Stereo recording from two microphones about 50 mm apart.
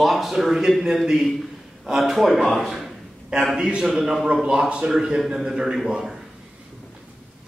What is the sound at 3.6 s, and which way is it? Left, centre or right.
Speech, centre.